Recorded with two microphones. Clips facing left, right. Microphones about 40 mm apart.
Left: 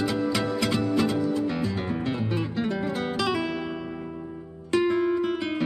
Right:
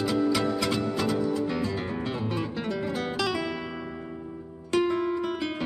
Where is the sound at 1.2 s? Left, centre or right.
Centre.